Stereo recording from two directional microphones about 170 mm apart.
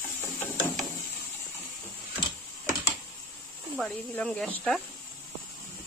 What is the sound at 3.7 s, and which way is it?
Speech, 5° left (ahead or behind).